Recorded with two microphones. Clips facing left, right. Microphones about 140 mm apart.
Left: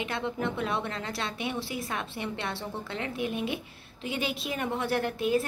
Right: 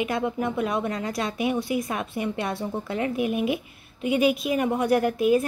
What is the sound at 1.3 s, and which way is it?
Speech, 30° left (ahead or behind).